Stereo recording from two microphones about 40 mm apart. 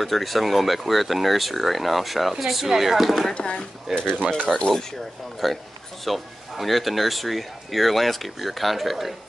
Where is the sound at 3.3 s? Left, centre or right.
Left.